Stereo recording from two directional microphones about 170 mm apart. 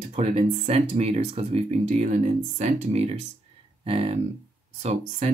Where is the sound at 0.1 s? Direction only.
40° right (ahead or behind).